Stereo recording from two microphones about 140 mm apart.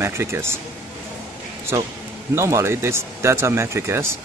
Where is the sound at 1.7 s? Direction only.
20° right (ahead or behind).